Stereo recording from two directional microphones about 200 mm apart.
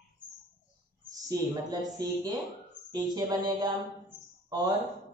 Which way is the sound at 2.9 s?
20° right (ahead or behind).